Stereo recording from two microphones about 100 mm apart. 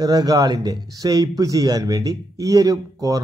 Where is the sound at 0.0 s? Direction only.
40° right (ahead or behind).